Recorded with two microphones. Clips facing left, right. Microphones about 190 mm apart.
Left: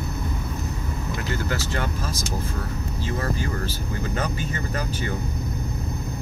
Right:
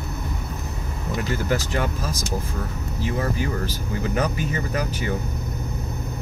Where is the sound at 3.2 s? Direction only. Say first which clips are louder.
Right 3 dB; 15° right (ahead or behind).